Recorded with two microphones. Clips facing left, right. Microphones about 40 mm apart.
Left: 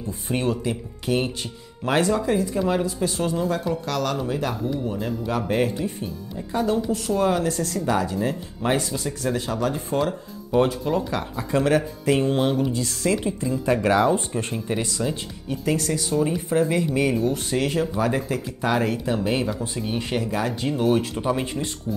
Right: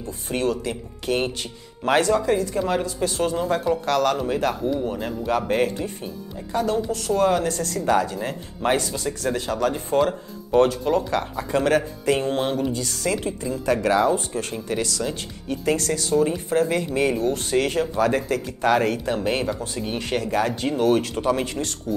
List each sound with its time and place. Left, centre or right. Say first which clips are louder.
0.4 s speech: right 1 dB; centre
1.0 s speech: even; centre
3.3 s speech: right 2 dB; centre
4.8 s a woman's voice: right 1 dB; centre
8.7 s speech: right 1 dB; centre
12.7 s a woman's voice: left 2 dB; centre
13.7 s speech: even; left
15.4 s a woman's voice: right 1 dB; centre
20.2 s speech: right 2 dB; centre
20.8 s speech: right 2 dB; centre